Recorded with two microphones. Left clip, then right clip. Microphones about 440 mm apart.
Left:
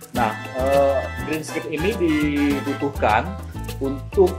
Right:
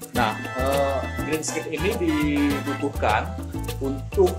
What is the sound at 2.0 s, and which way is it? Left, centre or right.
Speech, centre.